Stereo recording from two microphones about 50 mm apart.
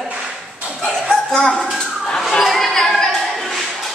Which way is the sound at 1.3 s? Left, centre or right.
Centre.